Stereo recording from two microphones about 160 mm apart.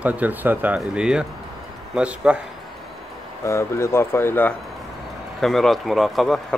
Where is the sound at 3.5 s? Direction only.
15° left (ahead or behind).